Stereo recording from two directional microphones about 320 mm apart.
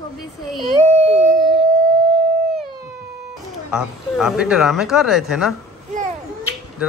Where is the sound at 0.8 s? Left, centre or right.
Centre.